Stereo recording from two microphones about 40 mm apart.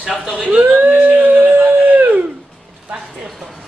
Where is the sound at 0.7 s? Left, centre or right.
Right.